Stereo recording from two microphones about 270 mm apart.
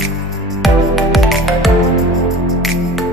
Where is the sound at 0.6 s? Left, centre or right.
Centre.